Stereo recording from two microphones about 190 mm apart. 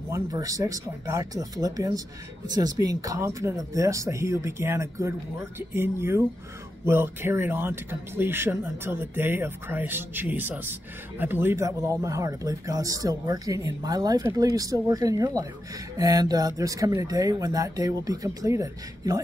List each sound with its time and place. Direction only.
0.1 s speech: 20° right (ahead or behind)